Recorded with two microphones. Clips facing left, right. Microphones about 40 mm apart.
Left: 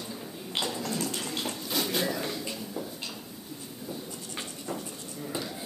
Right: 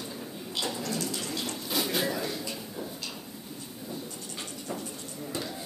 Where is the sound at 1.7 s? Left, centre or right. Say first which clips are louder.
Right 1 dB; centre.